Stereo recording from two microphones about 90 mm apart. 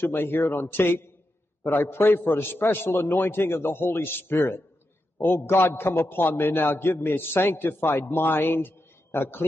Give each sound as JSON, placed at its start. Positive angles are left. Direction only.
{"t": 0.0, "sound": "a man's voice", "side_deg": 25}